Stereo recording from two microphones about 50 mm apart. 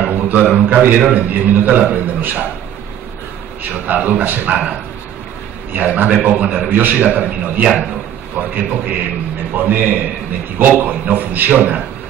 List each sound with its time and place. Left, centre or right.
0.0 s a man's voice: right
3.7 s a man's voice: right
5.9 s a man's voice: right